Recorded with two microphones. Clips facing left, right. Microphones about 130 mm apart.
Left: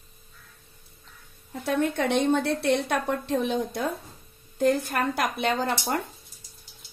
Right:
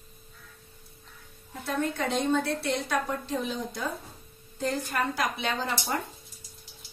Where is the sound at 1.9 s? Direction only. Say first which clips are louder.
Left 2 dB; 65° left (ahead or behind).